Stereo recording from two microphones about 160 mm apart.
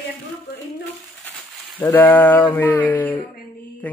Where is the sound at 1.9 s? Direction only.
10° left (ahead or behind).